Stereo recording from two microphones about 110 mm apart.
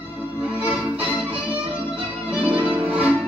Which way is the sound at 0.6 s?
15° right (ahead or behind).